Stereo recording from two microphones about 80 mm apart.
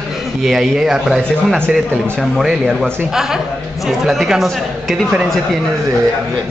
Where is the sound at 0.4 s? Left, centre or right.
Centre.